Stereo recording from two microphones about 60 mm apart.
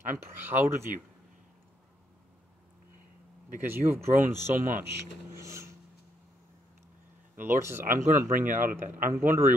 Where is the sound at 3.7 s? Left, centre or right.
Right.